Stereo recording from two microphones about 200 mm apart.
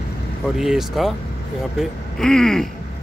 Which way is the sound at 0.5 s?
Centre (ahead or behind).